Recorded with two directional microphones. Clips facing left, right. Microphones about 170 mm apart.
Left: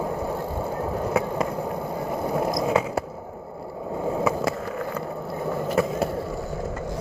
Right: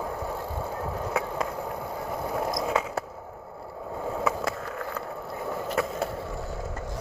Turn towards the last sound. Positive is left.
turn(degrees=10)  # may be behind; listen again after turning